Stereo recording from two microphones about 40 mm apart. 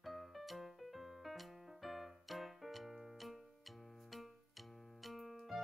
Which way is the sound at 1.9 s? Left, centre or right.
Centre.